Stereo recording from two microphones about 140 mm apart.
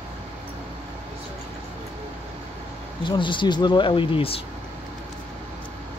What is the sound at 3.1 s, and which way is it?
Speech, 35° left (ahead or behind).